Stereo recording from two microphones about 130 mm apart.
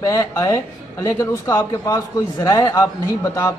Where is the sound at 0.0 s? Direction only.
25° left (ahead or behind).